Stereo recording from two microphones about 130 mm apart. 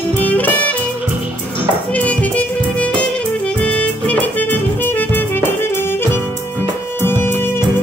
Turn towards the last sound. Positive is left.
turn(degrees=15)  # may be behind; listen again after turning